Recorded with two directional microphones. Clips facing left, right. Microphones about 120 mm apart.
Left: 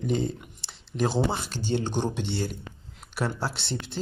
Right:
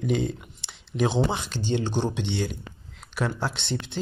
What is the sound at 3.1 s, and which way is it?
Speech, 10° left (ahead or behind).